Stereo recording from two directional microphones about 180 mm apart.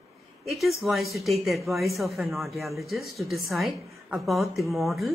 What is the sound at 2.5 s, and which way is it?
Speech, 15° right (ahead or behind).